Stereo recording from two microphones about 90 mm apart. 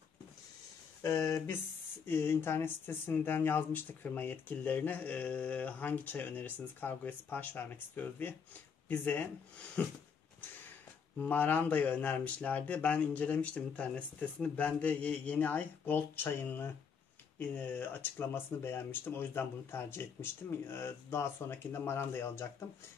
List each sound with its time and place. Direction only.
1.0 s speech: 35° left (ahead or behind); by 9.9 s 15° left (ahead or behind)
11.1 s speech: 20° left (ahead or behind)